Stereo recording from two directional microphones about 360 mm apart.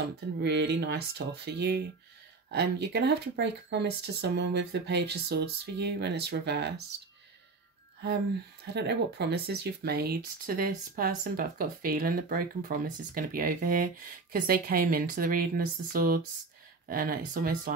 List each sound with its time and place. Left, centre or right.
0.4 s speech: right
8.7 s speech: right